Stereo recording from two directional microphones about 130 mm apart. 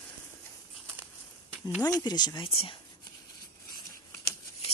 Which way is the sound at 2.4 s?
45° left (ahead or behind).